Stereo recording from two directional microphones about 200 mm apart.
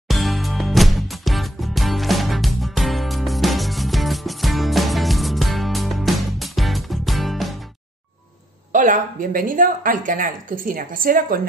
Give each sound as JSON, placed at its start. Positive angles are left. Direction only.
{"t": 0.1, "sound": "music", "side_deg": 0}
{"t": 8.7, "sound": "a woman's voice", "side_deg": -40}